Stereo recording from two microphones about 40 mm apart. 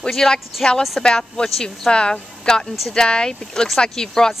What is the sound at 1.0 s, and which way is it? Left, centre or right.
Speech, centre.